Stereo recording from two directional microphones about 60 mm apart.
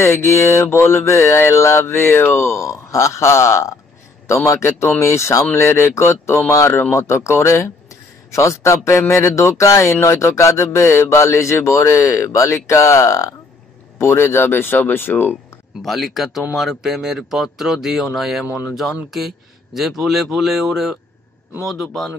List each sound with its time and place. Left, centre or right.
0.0 s mantra: left
8.3 s speech: left
13.9 s speech: left
15.8 s speech: centre